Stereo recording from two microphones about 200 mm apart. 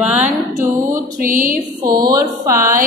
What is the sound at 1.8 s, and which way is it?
Speech, 20° right (ahead or behind).